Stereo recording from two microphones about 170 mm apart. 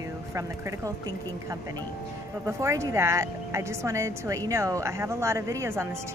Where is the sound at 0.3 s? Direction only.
20° right (ahead or behind).